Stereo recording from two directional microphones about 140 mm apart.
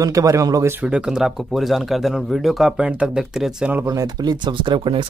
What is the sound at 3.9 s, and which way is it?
Speech, 30° right (ahead or behind).